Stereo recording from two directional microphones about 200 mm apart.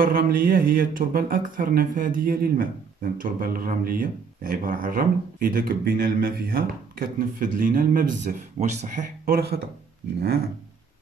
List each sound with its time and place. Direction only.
0.0 s speech: 45° right (ahead or behind)